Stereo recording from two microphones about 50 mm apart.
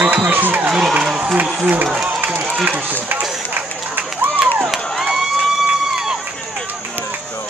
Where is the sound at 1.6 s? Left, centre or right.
Right.